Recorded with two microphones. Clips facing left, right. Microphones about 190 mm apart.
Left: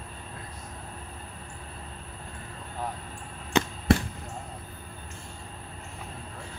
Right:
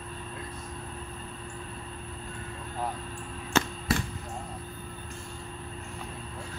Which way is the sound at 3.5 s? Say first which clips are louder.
Left 2 dB; 15° left (ahead or behind).